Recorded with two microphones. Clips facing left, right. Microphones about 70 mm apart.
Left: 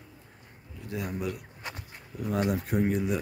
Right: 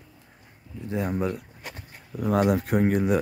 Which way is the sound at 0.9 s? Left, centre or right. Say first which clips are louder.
Right 6 dB; right.